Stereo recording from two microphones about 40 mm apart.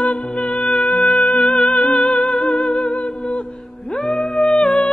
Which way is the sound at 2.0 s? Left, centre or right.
Left.